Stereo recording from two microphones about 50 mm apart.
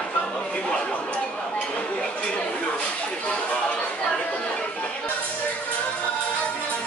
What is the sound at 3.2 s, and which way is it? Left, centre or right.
Chatter, left.